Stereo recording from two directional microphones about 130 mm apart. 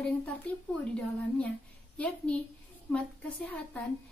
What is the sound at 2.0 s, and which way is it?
A woman's voice, 10° left (ahead or behind).